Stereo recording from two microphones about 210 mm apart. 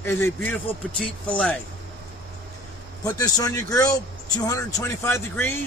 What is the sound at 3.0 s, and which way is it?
Speech, 15° left (ahead or behind).